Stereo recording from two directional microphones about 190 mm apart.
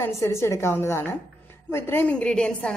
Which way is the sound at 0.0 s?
15° left (ahead or behind).